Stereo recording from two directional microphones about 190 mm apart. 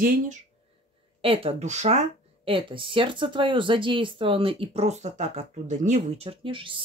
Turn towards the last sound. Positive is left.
turn(degrees=-25)  # may be behind; listen again after turning